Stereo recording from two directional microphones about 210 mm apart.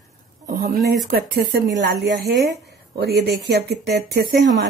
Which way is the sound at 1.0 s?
45° right (ahead or behind).